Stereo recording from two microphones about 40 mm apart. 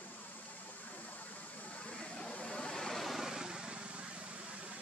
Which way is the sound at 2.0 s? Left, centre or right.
Left.